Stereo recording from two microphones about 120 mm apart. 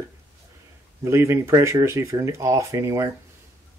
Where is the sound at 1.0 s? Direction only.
25° right (ahead or behind).